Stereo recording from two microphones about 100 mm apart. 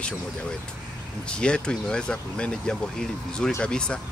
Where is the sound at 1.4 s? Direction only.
10° left (ahead or behind).